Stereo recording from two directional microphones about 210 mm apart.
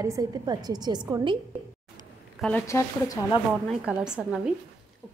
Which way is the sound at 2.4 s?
5° left (ahead or behind).